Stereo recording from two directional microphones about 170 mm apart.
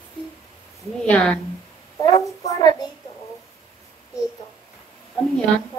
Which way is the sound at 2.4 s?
20° left (ahead or behind).